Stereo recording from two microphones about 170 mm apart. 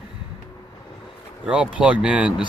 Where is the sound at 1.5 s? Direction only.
5° right (ahead or behind).